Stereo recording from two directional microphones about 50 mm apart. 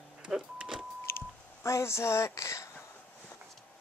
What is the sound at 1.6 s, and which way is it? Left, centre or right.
Speech, left.